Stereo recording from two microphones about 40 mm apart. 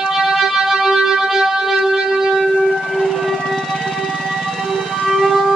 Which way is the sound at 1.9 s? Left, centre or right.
Centre.